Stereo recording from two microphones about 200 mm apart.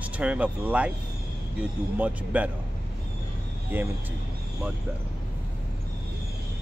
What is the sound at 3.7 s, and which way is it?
Speech, 10° right (ahead or behind).